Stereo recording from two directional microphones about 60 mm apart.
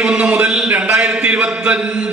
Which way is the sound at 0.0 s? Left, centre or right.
Centre.